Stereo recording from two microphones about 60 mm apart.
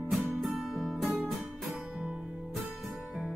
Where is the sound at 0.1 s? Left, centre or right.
Centre.